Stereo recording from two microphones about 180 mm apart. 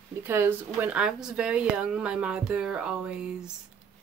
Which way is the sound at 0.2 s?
10° right (ahead or behind).